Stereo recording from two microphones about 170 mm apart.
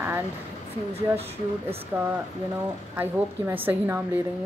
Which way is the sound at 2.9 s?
10° right (ahead or behind).